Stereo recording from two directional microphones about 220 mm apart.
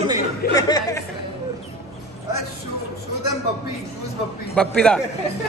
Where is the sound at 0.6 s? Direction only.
15° left (ahead or behind).